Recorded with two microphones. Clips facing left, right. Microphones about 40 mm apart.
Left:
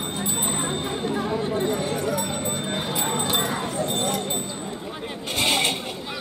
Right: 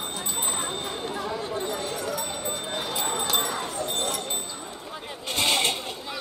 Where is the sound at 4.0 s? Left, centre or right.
Centre.